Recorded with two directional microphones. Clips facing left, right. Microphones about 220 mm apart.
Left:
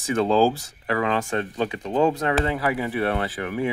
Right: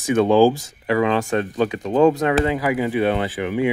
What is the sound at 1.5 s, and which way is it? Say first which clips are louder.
Speech: right 5 dB; 20° left (ahead or behind).